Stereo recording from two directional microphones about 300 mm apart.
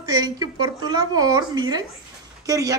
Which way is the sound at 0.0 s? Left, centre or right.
Centre.